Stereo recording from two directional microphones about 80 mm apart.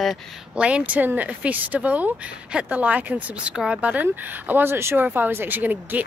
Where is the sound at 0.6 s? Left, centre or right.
Centre.